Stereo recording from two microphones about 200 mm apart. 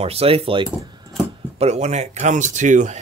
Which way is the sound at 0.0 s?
30° right (ahead or behind).